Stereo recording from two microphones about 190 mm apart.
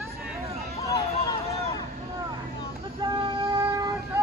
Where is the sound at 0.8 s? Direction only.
20° left (ahead or behind).